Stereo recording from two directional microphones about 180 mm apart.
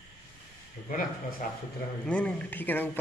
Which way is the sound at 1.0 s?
50° left (ahead or behind).